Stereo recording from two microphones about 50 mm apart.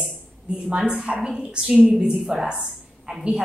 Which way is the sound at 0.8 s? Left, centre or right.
Centre.